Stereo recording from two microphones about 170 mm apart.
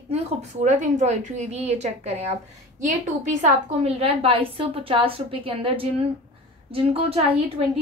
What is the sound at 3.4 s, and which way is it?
A woman's voice, 35° right (ahead or behind).